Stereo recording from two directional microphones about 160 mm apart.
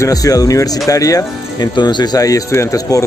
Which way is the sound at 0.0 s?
20° left (ahead or behind).